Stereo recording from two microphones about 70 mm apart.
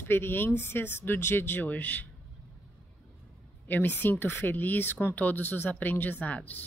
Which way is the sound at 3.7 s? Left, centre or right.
Left.